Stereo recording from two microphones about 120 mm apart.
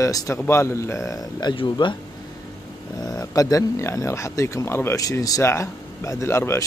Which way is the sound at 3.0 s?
30° left (ahead or behind).